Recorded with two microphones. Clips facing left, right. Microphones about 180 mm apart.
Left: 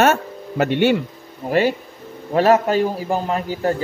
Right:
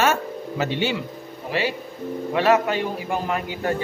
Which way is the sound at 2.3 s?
40° left (ahead or behind).